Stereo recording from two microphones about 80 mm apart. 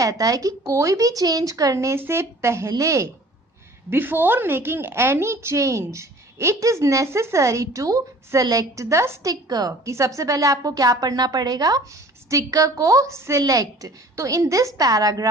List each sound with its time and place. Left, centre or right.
0.0 s a woman's voice: right
3.9 s a woman's voice: right
9.2 s speech: right
9.8 s speech: right